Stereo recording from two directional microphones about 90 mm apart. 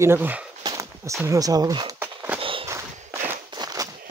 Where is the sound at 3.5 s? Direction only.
45° right (ahead or behind).